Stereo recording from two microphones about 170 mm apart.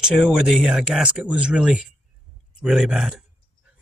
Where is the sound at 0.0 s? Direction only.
5° right (ahead or behind).